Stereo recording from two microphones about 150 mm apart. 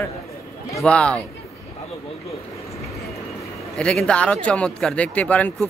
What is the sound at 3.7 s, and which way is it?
Speech, 5° left (ahead or behind).